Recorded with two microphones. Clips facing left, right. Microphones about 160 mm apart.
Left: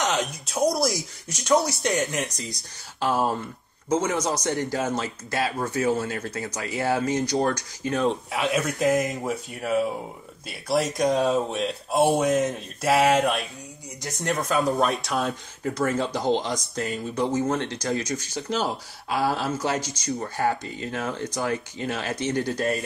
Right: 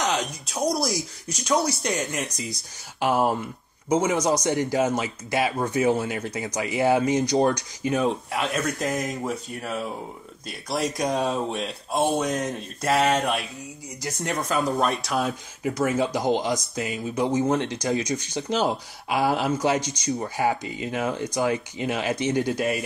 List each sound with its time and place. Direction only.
0.0 s speech: centre (ahead or behind)
3.0 s speech: 15° right (ahead or behind)
8.3 s speech: 5° left (ahead or behind)